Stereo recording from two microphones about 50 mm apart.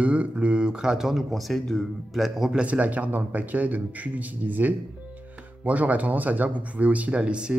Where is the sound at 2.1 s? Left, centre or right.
Centre.